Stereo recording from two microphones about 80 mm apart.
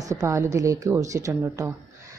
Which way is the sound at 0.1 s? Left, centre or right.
Right.